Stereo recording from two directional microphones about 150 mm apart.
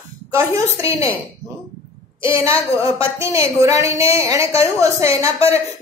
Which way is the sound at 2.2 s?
15° right (ahead or behind).